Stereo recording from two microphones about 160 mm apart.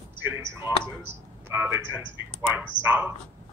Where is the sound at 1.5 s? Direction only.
15° right (ahead or behind).